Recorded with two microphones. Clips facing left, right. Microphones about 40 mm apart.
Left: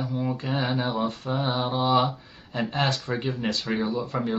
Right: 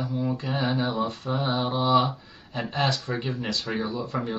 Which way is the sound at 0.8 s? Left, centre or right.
Left.